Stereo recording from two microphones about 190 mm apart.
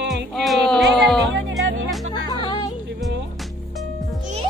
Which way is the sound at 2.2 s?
20° left (ahead or behind).